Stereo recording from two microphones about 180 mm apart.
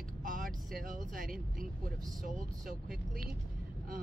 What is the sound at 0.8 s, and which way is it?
Speech, 50° right (ahead or behind).